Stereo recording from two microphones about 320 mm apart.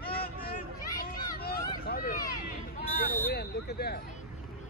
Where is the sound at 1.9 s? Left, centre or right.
Left.